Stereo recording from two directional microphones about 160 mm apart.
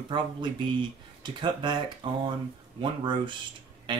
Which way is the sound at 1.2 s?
30° right (ahead or behind).